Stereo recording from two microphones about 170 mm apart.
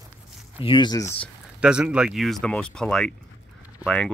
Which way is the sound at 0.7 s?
25° left (ahead or behind).